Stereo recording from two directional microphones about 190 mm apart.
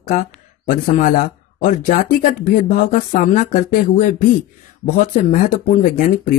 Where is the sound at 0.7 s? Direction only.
45° left (ahead or behind).